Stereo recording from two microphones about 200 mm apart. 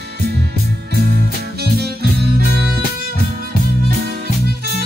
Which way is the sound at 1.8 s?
50° right (ahead or behind).